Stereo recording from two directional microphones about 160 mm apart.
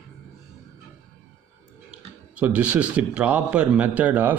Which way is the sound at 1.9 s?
5° right (ahead or behind).